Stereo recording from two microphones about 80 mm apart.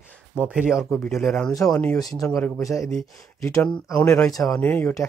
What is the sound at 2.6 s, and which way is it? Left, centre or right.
Speech, left.